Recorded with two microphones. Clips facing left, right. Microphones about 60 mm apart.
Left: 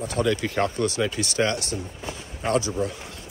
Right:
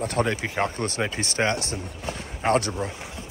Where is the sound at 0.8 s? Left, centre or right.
Right.